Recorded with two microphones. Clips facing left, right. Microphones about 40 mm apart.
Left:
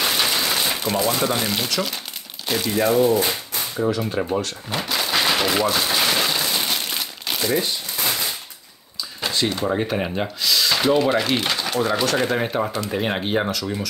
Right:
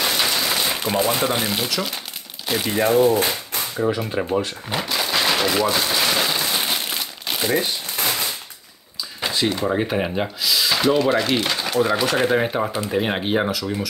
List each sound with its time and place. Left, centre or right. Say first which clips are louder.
0.0 s a sound: even; centre
0.9 s speech: right 1 dB; right
1.3 s speech: even; centre
2.6 s speech: right 1 dB; right
3.3 s a sound: right 1 dB; centre
3.9 s speech: even; centre
4.7 s a sound: even; centre
6.5 s crumpling: right 1 dB; centre
7.4 s speech: right 1 dB; right
8.0 s a sound: right 1 dB; centre
9.2 s speech: right 1 dB; centre
11.8 s speech: right 2 dB; centre